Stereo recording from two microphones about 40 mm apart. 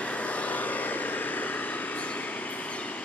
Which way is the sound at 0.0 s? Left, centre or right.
Left.